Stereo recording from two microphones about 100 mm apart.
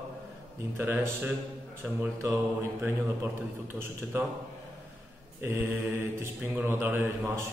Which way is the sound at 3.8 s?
25° right (ahead or behind).